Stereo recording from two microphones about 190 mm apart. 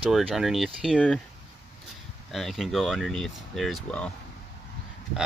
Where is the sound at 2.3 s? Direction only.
Centre (ahead or behind).